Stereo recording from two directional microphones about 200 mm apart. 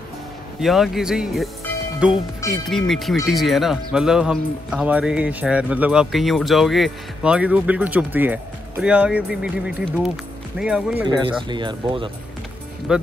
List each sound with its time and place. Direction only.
0.6 s speech: centre (ahead or behind)
11.1 s speech: 25° right (ahead or behind)
12.9 s speech: 5° right (ahead or behind)